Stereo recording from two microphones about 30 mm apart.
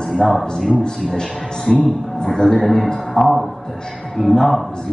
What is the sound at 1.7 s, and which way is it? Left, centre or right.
Speech, left.